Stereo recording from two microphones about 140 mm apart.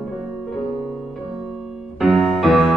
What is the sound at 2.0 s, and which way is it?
Music, centre (ahead or behind).